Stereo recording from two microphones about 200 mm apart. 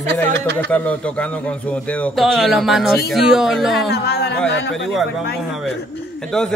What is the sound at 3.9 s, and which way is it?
Speech, 55° left (ahead or behind).